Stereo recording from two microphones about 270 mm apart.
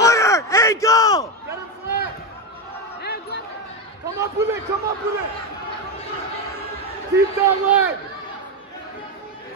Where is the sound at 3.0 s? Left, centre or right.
Left.